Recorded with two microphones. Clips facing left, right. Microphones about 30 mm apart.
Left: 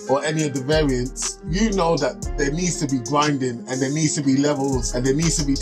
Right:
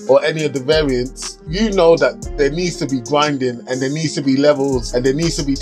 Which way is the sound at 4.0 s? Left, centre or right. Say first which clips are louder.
Right 3 dB; right.